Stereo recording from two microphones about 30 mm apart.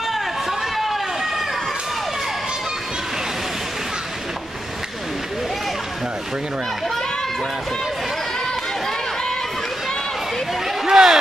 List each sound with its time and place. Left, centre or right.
0.1 s run: centre
10.9 s speech: centre